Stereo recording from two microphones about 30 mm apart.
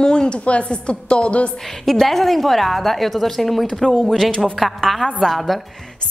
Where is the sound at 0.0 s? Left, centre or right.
Left.